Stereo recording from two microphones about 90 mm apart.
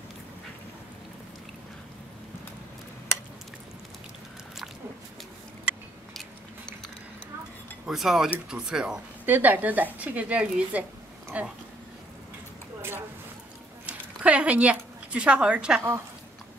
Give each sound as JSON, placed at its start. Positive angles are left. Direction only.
{"t": 7.8, "sound": "speech", "side_deg": -5}
{"t": 9.2, "sound": "a woman's voice", "side_deg": -20}
{"t": 13.8, "sound": "a sound", "side_deg": -15}